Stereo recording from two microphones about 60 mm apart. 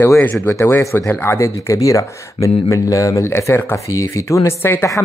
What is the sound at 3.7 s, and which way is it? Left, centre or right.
Speech, left.